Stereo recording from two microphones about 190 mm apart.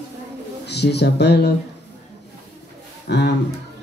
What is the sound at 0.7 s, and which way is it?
Speech, 60° left (ahead or behind).